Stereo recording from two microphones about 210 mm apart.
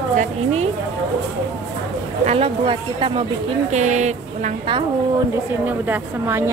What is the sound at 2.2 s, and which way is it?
A woman's voice, 30° right (ahead or behind).